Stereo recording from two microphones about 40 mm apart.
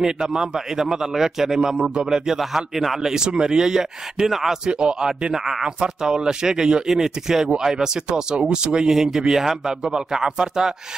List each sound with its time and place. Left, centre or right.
0.0 s a man's voice: centre
3.1 s a man's voice: centre